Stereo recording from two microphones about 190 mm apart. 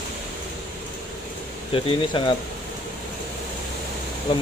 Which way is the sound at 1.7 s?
30° left (ahead or behind).